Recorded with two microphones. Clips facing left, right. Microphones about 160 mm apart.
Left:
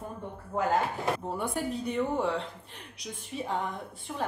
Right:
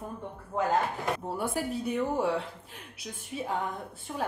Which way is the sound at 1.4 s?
5° right (ahead or behind).